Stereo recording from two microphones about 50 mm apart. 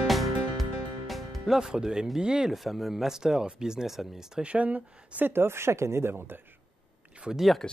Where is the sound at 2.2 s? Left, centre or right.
Centre.